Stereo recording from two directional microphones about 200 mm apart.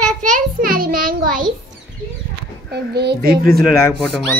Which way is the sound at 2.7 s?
55° right (ahead or behind).